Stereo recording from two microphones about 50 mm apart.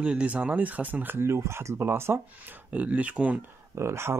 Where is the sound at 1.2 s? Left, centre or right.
Right.